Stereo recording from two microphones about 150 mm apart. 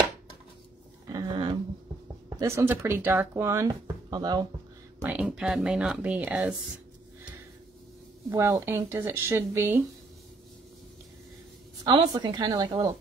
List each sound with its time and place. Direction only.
1.0 s a sound: 25° right (ahead or behind)
2.2 s speech: 25° right (ahead or behind)
5.0 s speech: 5° right (ahead or behind)
8.3 s speech: 20° right (ahead or behind)
11.8 s speech: 30° right (ahead or behind)